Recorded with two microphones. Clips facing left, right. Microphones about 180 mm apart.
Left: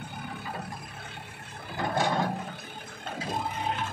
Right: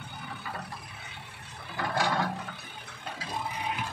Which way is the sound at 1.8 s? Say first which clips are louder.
Left 2 dB; 20° left (ahead or behind).